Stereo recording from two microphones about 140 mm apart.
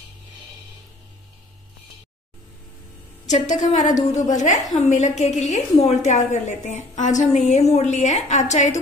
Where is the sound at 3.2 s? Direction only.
60° left (ahead or behind).